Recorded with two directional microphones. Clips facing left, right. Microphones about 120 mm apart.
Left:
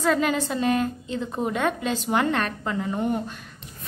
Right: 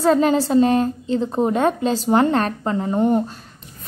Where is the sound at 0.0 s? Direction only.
35° right (ahead or behind).